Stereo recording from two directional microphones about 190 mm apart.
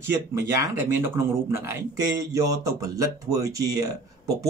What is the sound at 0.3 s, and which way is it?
Speech, 15° right (ahead or behind).